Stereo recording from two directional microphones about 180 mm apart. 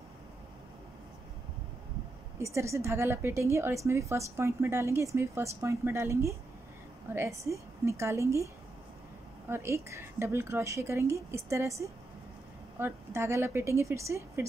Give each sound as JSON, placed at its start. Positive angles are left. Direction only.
{"t": 2.3, "sound": "a woman's voice", "side_deg": -15}
{"t": 9.5, "sound": "a woman's voice", "side_deg": -15}